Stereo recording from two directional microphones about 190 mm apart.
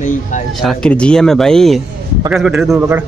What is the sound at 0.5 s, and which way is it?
Speech, centre (ahead or behind).